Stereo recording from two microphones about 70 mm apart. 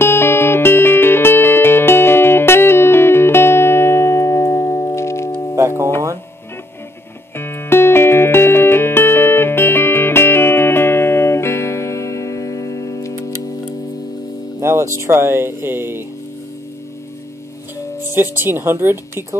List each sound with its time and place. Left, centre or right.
0.0 s music: left
5.6 s music: right
7.3 s music: left
14.6 s music: right
18.1 s speech: right